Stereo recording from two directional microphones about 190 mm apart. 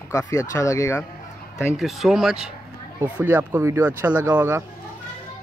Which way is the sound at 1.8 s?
Centre (ahead or behind).